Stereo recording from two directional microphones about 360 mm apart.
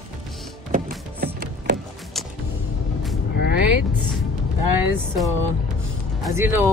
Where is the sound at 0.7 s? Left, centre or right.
Right.